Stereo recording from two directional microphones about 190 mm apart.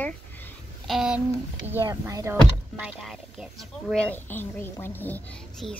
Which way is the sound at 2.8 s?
Centre (ahead or behind).